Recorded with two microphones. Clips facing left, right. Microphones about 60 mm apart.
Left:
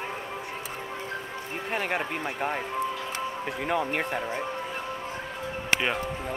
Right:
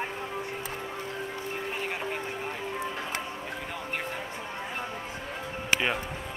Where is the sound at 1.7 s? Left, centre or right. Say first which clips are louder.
Left 7 dB; left.